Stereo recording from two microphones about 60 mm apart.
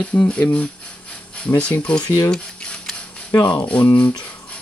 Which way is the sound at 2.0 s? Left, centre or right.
Left.